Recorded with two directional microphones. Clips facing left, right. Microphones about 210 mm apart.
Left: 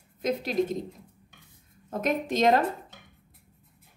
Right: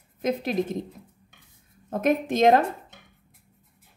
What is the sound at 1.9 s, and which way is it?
Speech, 50° right (ahead or behind).